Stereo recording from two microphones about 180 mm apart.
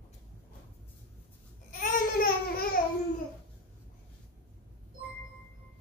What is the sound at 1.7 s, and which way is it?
Babbling, 50° left (ahead or behind).